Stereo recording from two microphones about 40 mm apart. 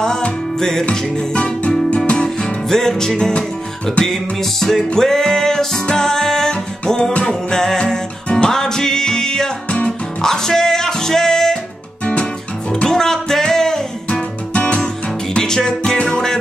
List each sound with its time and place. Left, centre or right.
0.0 s music: centre
0.8 s music: left
2.7 s music: centre
12.8 s music: centre
14.5 s music: left
15.3 s music: centre